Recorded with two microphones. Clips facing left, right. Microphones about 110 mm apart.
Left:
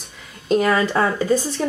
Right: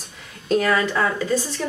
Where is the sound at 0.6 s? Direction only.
30° left (ahead or behind).